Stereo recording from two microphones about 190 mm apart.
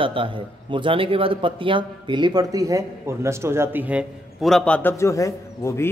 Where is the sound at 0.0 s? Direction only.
25° right (ahead or behind).